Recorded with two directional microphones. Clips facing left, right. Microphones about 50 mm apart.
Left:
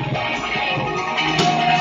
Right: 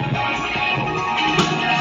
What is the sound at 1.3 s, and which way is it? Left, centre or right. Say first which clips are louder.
Music: left 2 dB; right.